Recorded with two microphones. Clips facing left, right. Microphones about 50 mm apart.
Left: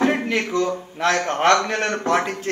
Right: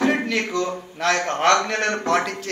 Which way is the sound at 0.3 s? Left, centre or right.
Left.